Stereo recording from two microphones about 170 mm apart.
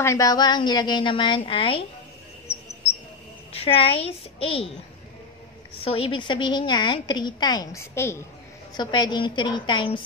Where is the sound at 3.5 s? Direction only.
35° left (ahead or behind).